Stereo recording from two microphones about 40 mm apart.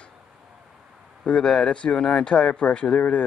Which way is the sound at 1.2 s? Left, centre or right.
Left.